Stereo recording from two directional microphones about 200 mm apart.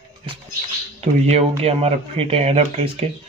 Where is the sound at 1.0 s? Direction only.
35° right (ahead or behind).